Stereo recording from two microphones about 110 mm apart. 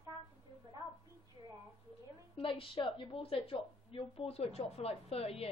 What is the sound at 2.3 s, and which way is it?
A woman's voice, 55° left (ahead or behind).